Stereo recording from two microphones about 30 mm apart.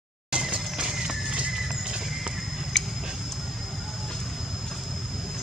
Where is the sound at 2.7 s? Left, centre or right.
Centre.